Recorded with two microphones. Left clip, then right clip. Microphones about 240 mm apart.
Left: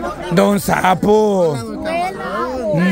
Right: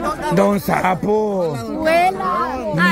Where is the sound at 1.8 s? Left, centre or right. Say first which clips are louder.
Right 6 dB; right.